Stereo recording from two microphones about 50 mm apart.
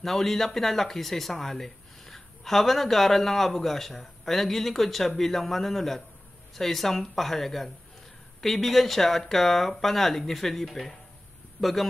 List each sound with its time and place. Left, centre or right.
0.0 s speech: centre